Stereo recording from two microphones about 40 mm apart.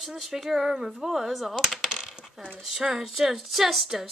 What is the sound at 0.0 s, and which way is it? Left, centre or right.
Speech, centre.